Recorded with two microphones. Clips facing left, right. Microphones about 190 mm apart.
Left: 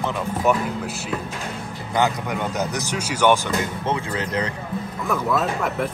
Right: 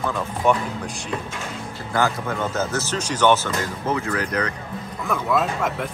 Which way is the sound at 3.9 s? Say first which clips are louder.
Right 4 dB; 30° left (ahead or behind).